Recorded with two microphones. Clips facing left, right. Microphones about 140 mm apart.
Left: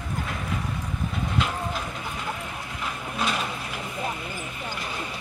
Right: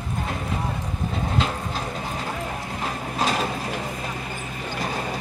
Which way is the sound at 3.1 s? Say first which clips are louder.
Right 4 dB; 35° right (ahead or behind).